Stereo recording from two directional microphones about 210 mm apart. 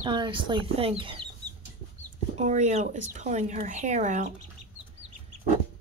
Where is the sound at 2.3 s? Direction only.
35° right (ahead or behind).